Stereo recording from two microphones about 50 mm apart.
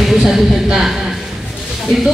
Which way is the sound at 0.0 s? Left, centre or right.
Centre.